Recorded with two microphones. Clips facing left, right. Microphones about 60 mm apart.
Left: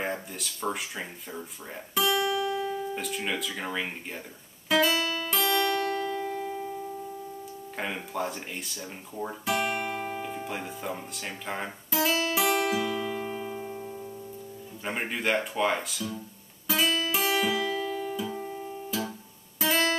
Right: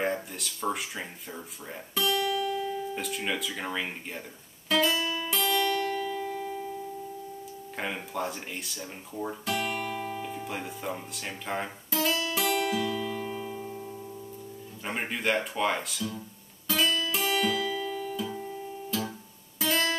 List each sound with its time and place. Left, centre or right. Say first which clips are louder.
0.0 s speech: right 2 dB; centre
2.0 s music: left 1 dB; centre
3.0 s speech: even; centre
4.6 s music: left 2 dB; centre
7.7 s speech: left 1 dB; centre
10.5 s speech: even; centre
12.1 s music: left 3 dB; centre
14.9 s speech: left 1 dB; centre
16.6 s guitar: left 1 dB; centre
17.4 s music: left 1 dB; centre